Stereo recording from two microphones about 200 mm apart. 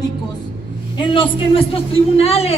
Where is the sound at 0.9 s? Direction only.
25° left (ahead or behind).